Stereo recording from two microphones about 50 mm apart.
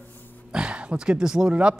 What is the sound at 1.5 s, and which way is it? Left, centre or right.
Speech, right.